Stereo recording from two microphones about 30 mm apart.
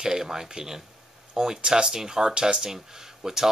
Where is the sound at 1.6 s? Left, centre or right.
Right.